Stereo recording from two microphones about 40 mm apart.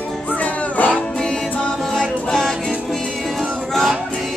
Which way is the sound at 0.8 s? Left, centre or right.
Left.